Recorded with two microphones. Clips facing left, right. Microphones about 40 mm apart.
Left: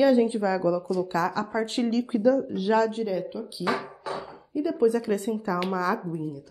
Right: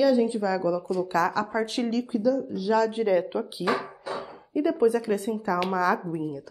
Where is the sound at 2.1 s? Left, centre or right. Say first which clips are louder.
Left 2 dB; left.